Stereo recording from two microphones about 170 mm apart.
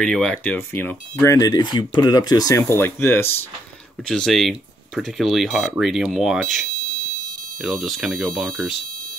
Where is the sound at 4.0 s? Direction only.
Centre (ahead or behind).